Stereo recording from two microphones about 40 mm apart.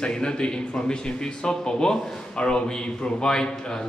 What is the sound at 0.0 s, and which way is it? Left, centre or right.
A man's voice, left.